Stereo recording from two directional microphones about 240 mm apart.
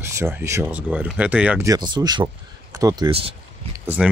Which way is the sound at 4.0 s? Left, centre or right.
Centre.